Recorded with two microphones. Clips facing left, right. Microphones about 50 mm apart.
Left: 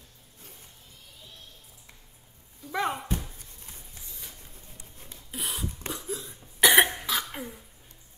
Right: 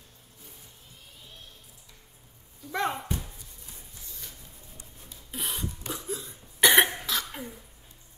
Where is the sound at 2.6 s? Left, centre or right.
Centre.